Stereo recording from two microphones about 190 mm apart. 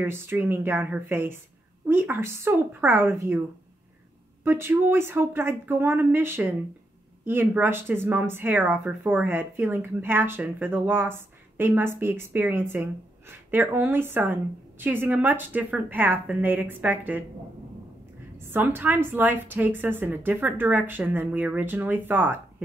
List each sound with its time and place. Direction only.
0.0 s speech: 10° right (ahead or behind)
4.5 s speech: 10° right (ahead or behind)
18.4 s speech: 10° right (ahead or behind)